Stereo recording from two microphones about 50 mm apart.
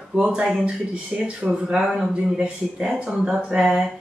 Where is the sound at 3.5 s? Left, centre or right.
Centre.